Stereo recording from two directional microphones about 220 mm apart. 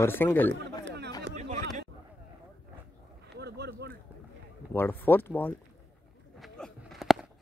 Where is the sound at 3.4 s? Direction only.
50° right (ahead or behind).